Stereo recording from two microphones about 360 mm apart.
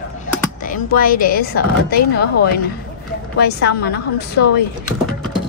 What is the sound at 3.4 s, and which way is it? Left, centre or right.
A woman's voice, left.